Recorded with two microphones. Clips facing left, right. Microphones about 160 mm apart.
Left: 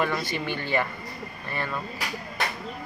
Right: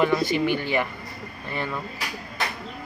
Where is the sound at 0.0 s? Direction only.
15° right (ahead or behind).